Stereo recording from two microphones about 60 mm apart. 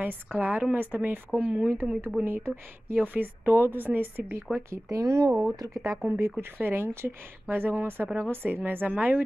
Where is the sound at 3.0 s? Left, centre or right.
Right.